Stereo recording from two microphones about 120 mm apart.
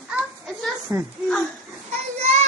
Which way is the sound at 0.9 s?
30° right (ahead or behind).